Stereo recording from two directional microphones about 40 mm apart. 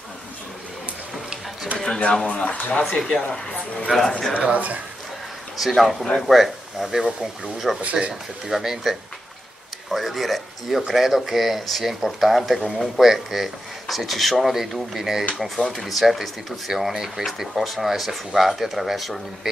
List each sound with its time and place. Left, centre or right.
1.9 s speech: left
3.0 s speech: centre
4.3 s speech: right
5.6 s speech: centre
7.8 s speech: right
8.1 s speech: centre